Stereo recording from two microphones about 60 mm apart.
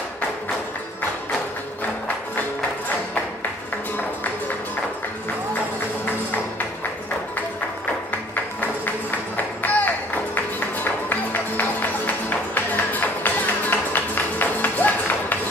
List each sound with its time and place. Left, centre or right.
9.6 s music: left